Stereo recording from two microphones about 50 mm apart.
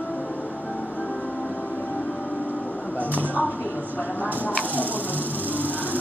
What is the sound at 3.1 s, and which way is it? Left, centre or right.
Speech, right.